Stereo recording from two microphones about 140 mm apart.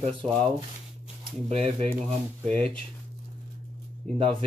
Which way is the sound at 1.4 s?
50° right (ahead or behind).